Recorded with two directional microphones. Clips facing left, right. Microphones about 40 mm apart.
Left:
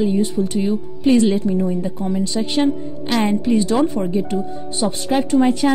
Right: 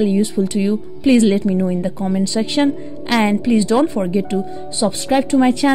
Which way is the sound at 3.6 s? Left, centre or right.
Right.